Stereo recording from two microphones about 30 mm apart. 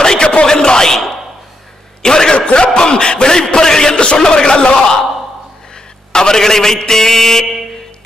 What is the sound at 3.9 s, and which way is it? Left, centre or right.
Speech, left.